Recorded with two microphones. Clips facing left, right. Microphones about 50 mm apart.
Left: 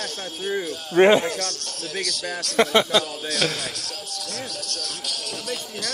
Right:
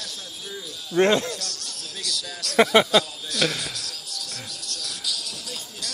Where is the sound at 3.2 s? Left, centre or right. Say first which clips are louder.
Left 1 dB; left.